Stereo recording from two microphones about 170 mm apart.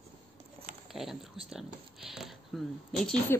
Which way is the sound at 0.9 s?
Centre (ahead or behind).